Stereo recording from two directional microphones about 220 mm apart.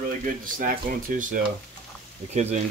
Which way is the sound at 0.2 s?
40° right (ahead or behind).